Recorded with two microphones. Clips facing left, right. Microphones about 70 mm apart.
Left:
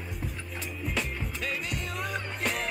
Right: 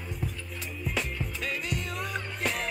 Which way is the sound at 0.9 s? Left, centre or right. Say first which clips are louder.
Right 1 dB; centre.